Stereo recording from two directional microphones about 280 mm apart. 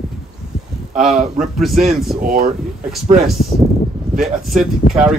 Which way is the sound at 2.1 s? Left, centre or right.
Right.